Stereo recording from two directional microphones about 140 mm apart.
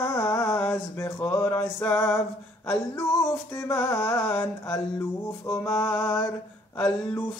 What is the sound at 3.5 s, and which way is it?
Music, 20° left (ahead or behind).